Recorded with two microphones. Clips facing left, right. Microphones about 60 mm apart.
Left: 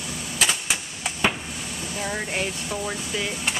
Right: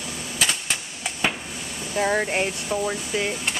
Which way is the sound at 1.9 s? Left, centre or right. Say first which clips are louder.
Right 7 dB; right.